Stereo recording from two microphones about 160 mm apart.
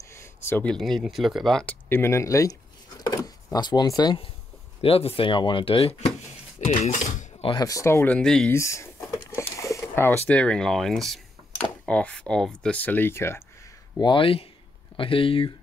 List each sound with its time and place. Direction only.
0.1 s speech: 15° left (ahead or behind)
3.5 s speech: 25° left (ahead or behind)
4.8 s speech: 35° left (ahead or behind)
7.4 s speech: 25° left (ahead or behind); by 8.5 s 5° left (ahead or behind)
8.5 s speech: 20° left (ahead or behind)
13.9 s speech: 30° left (ahead or behind)